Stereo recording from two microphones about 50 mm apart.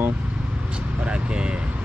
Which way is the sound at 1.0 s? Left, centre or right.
Centre.